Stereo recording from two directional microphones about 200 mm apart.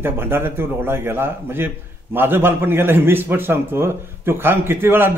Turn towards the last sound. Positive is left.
turn(degrees=-10)  # may be behind; listen again after turning